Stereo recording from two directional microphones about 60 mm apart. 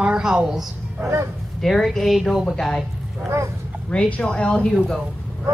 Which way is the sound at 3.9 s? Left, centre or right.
Centre.